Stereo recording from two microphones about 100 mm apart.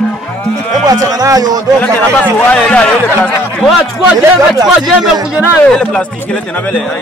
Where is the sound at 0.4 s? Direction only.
10° left (ahead or behind).